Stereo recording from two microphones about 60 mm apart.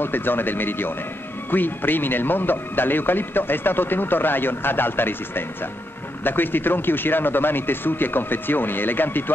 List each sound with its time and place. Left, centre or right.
0.0 s speech: left